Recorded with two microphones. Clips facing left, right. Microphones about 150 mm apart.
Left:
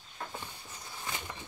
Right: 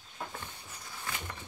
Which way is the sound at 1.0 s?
20° left (ahead or behind).